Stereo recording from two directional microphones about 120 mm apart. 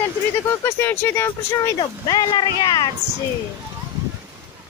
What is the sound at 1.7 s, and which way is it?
Speech, 40° left (ahead or behind).